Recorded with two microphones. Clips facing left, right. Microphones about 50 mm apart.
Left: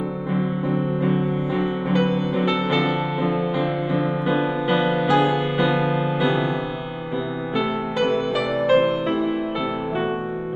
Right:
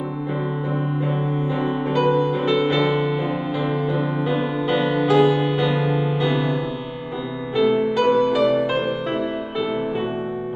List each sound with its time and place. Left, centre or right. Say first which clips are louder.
0.3 s music: left 3 dB; centre
7.5 s music: right 6 dB; centre